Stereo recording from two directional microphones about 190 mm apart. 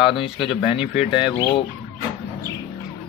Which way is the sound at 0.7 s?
30° left (ahead or behind).